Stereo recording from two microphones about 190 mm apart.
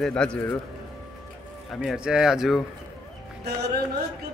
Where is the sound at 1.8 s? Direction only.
5° right (ahead or behind).